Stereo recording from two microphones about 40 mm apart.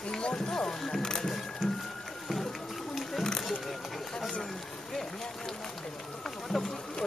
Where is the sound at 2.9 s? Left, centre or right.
Centre.